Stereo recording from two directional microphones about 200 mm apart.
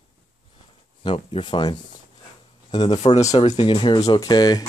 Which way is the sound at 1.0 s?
25° left (ahead or behind).